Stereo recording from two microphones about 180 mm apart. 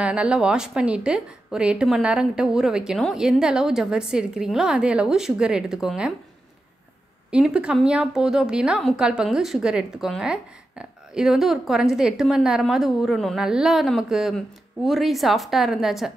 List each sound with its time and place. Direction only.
0.0 s a woman's voice: 5° right (ahead or behind)
7.2 s a woman's voice: 5° right (ahead or behind)